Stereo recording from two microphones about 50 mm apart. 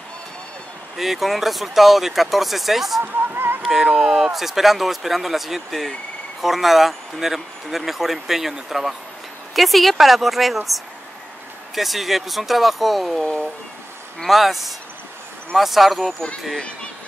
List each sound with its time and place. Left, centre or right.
0.9 s speech: centre
3.0 s speech: right
3.6 s speech: centre
14.2 s speech: centre
16.5 s speech: left